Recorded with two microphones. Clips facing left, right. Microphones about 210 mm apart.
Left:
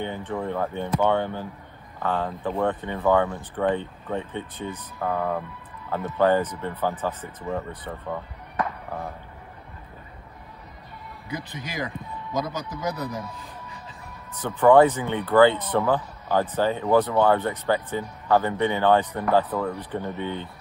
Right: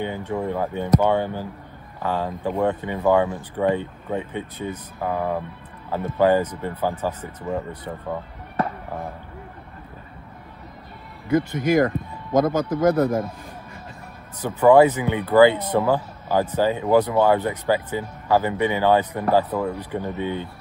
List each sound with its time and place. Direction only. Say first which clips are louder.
0.0 s speech: right 3 dB; 10° right (ahead or behind)
11.2 s speech: right 15 dB; 50° right (ahead or behind)
14.6 s speech: right 2 dB; 10° right (ahead or behind)